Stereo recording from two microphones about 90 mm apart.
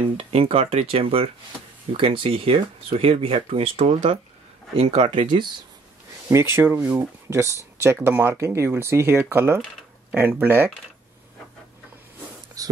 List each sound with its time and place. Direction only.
0.2 s speech: 90° right
4.7 s speech: 65° right (ahead or behind)
6.2 s speech: 30° right (ahead or behind)
12.6 s speech: 40° right (ahead or behind)